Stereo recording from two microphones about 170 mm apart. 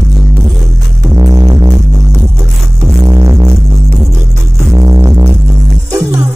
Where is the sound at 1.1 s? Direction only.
20° right (ahead or behind).